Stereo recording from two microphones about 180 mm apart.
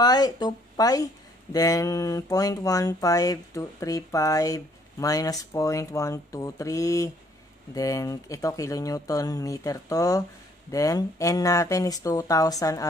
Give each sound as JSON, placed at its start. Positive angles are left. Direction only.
{"t": 0.0, "sound": "speech", "side_deg": 20}